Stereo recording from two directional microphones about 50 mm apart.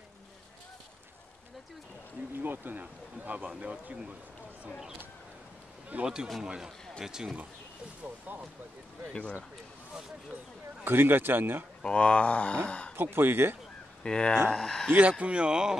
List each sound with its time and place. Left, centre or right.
2.3 s speech: right
4.6 s speech: centre
5.9 s speech: right
6.4 s speech: centre
8.3 s speech: right
9.1 s speech: left
10.8 s a man's voice: right
11.8 s speech: left
12.9 s a man's voice: right
14.0 s speech: centre
14.9 s speech: right; by 15.8 s centre